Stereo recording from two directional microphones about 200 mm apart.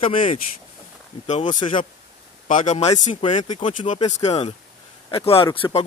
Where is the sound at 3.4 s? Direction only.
35° left (ahead or behind).